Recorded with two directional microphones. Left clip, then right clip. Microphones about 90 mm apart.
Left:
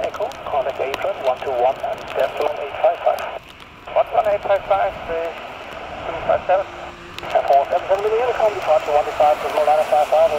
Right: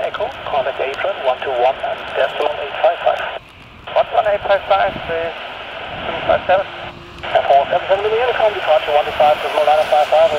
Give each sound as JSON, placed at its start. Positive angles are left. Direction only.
{"t": 0.5, "sound": "radio", "side_deg": -30}
{"t": 3.9, "sound": "a sound", "side_deg": -25}
{"t": 6.0, "sound": "vehicle", "side_deg": -25}